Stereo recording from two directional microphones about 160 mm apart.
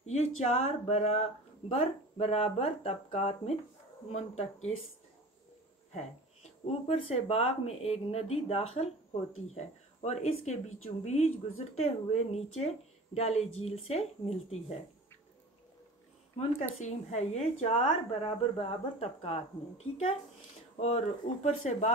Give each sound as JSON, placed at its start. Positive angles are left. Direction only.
{"t": 0.1, "sound": "speech", "side_deg": 40}
{"t": 6.9, "sound": "speech", "side_deg": 35}
{"t": 10.0, "sound": "speech", "side_deg": 45}
{"t": 16.8, "sound": "speech", "side_deg": 45}